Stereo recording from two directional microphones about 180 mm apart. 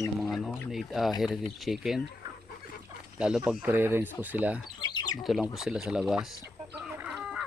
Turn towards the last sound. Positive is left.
turn(degrees=-5)  # may be behind; listen again after turning